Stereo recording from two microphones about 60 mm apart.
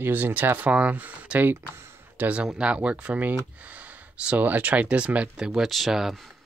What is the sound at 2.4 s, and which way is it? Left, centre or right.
Speech, centre.